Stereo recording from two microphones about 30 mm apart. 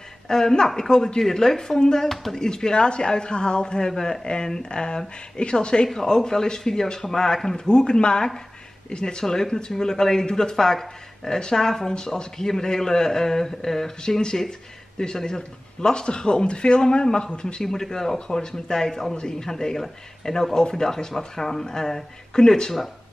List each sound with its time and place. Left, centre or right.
0.3 s a man's voice: centre; by 5.9 s left
5.9 s a man's voice: left
7.5 s a man's voice: left
10.5 s a man's voice: centre; by 17.6 s left
17.6 s a man's voice: centre